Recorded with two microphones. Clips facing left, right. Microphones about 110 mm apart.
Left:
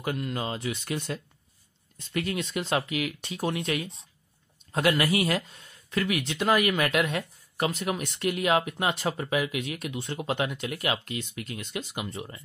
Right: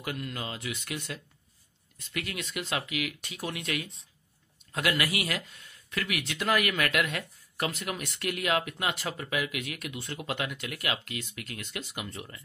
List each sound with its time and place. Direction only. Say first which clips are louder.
0.0 s speech: left 5 dB; 30° left (ahead or behind)